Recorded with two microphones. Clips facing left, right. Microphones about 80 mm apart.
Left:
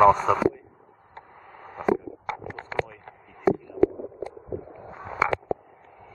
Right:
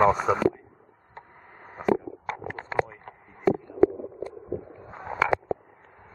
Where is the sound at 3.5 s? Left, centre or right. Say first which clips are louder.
Left 1 dB; centre.